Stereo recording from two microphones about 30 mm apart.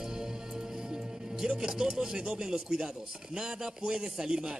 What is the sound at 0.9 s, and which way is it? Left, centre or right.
Music, right.